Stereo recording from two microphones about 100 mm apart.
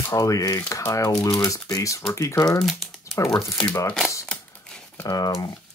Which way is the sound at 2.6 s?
5° left (ahead or behind).